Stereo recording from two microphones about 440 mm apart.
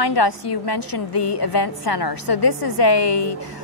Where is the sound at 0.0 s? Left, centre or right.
Left.